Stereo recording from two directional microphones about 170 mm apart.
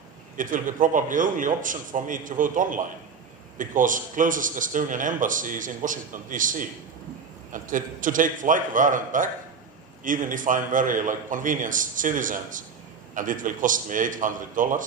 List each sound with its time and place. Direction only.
0.4 s a man's voice: 50° right (ahead or behind)